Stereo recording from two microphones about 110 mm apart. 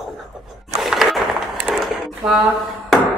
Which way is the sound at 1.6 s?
5° right (ahead or behind).